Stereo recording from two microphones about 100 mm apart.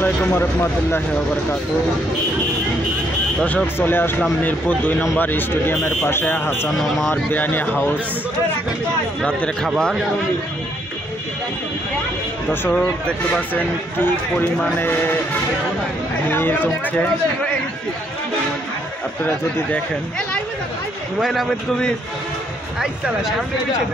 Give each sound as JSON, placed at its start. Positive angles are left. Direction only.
{"t": 0.0, "sound": "speech", "side_deg": 20}
{"t": 3.4, "sound": "speech", "side_deg": 20}
{"t": 6.6, "sound": "a man's voice", "side_deg": 0}
{"t": 7.2, "sound": "speech", "side_deg": 20}
{"t": 9.2, "sound": "speech", "side_deg": 5}
{"t": 12.4, "sound": "speech", "side_deg": 15}
{"t": 16.3, "sound": "speech", "side_deg": 20}
{"t": 19.2, "sound": "speech", "side_deg": 15}
{"t": 21.2, "sound": "a man's voice", "side_deg": 0}
{"t": 22.8, "sound": "a man's voice", "side_deg": -5}